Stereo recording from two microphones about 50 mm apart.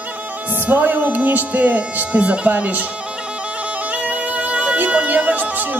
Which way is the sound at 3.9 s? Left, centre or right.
Right.